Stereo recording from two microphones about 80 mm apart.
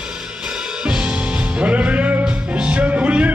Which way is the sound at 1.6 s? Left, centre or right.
Centre.